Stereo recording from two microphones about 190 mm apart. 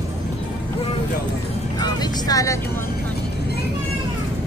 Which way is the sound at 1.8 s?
20° left (ahead or behind).